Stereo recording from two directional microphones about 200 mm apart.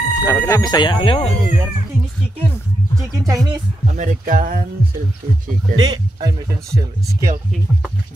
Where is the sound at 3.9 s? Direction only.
40° right (ahead or behind).